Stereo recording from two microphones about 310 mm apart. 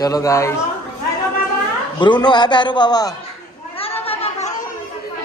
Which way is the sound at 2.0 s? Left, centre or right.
Centre.